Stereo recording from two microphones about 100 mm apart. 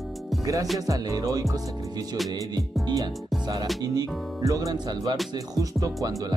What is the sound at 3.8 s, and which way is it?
Speech, 40° right (ahead or behind).